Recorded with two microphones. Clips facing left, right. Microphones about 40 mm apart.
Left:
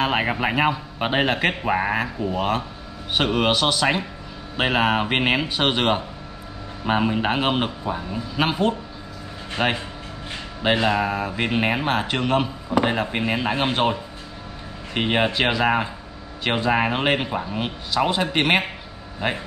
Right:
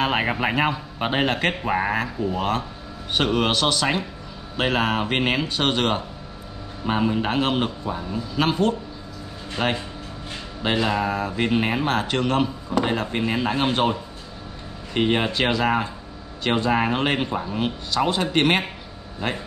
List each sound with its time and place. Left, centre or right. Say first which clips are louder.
0.0 s a man's voice: even; centre
15.0 s speech: even; centre